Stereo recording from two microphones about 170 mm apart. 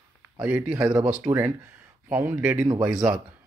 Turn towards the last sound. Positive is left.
turn(degrees=-5)  # may be behind; listen again after turning